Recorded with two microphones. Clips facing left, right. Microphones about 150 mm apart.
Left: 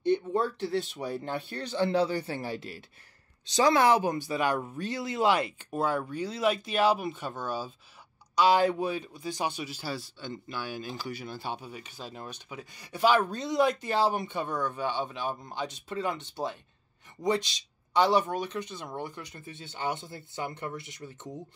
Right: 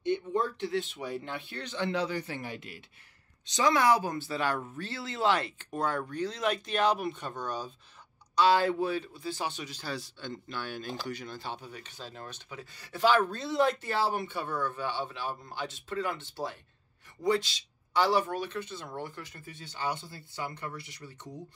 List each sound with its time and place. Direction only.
0.0 s speech: 35° left (ahead or behind); by 7.7 s 5° left (ahead or behind)
8.4 s speech: 15° left (ahead or behind)